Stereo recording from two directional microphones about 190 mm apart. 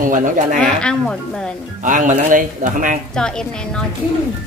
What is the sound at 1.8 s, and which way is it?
A man's voice, 40° right (ahead or behind).